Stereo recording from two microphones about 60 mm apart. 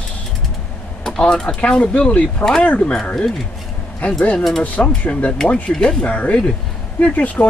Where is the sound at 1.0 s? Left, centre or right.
Centre.